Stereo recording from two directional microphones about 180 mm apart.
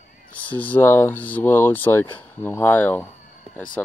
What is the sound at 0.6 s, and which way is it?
Speech, 10° left (ahead or behind).